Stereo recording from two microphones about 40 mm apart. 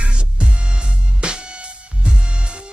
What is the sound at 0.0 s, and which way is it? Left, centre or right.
Music, right.